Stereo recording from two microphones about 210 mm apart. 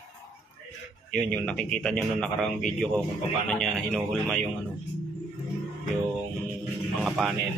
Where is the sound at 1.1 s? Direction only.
5° left (ahead or behind).